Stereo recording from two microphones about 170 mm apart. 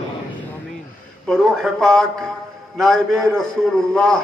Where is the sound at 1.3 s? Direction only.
5° left (ahead or behind).